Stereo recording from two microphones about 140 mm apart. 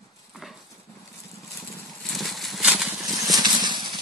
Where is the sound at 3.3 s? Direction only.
30° right (ahead or behind).